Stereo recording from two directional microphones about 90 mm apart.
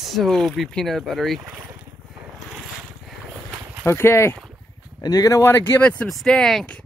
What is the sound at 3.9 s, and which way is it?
Speech, 30° left (ahead or behind).